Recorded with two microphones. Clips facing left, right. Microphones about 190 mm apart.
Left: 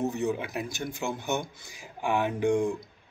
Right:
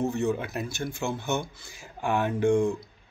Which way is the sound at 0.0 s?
20° left (ahead or behind).